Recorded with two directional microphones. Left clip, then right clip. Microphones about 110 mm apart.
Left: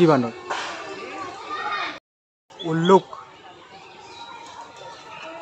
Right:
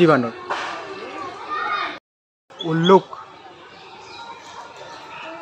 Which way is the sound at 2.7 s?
20° right (ahead or behind).